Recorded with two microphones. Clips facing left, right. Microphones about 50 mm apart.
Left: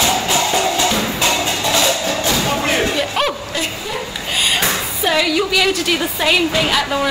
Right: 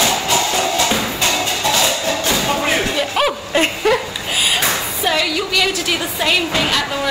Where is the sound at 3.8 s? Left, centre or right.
Right.